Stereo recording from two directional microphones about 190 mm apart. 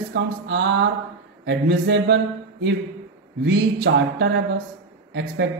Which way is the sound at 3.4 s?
70° right (ahead or behind).